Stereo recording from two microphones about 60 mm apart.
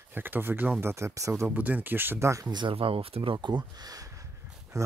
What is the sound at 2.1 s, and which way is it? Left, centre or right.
Speech, right.